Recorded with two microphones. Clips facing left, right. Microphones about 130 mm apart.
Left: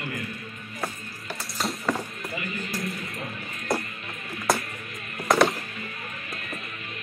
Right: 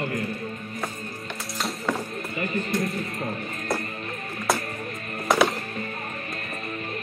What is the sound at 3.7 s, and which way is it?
Music, centre (ahead or behind).